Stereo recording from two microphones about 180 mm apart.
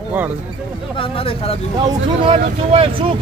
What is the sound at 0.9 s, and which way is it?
Speech, 30° left (ahead or behind).